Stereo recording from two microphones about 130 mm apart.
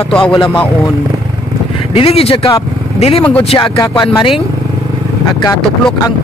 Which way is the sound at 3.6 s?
35° left (ahead or behind).